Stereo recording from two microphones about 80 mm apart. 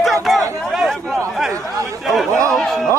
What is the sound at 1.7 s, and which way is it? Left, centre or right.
Chatter, right.